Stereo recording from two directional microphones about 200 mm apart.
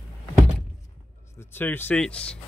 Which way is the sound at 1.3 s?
10° left (ahead or behind).